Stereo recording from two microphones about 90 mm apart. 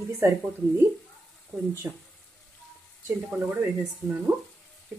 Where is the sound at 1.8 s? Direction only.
25° right (ahead or behind).